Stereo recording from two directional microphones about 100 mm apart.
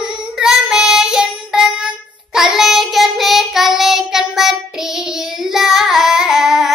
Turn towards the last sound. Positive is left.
turn(degrees=-5)  # may be behind; listen again after turning